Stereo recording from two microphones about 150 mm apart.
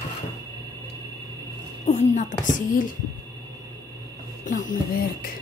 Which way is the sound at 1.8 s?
55° left (ahead or behind).